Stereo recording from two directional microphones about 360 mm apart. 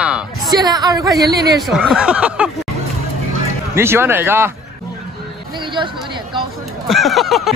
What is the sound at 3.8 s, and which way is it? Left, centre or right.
Speech, centre.